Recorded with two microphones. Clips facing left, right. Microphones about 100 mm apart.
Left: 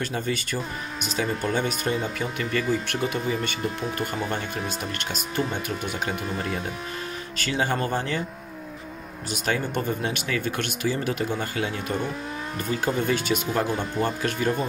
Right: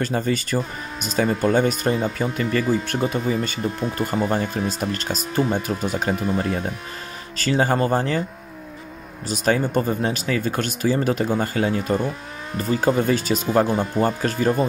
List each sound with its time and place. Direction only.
0.0 s speech: 40° right (ahead or behind)
9.3 s speech: 35° right (ahead or behind)